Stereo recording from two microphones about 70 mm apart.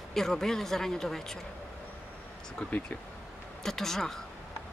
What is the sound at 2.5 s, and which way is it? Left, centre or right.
Speech, centre.